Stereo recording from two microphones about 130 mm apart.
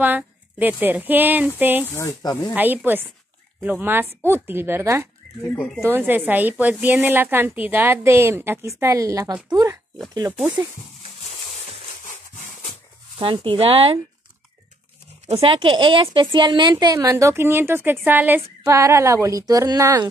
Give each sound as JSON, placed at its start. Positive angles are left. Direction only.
{"t": 0.0, "sound": "speech", "side_deg": -15}
{"t": 1.9, "sound": "speech", "side_deg": 25}
{"t": 2.5, "sound": "a woman's voice", "side_deg": -15}
{"t": 13.2, "sound": "speech", "side_deg": -40}
{"t": 15.4, "sound": "a woman's voice", "side_deg": -40}